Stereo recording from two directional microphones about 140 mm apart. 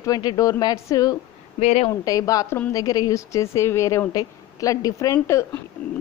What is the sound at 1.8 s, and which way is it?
Speech, 25° left (ahead or behind).